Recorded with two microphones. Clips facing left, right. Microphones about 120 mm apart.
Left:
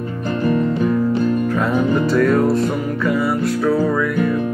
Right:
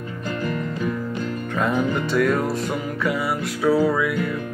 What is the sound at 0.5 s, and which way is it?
Music, 30° left (ahead or behind).